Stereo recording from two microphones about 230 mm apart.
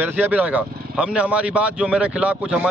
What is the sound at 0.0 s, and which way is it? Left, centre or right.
A man's voice, centre.